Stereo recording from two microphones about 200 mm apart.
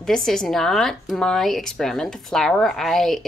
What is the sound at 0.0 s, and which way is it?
Speech, centre (ahead or behind).